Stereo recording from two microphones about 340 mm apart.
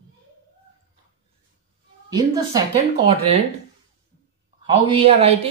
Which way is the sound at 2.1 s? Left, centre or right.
Centre.